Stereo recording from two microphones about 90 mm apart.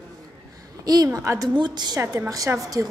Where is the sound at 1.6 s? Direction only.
55° right (ahead or behind).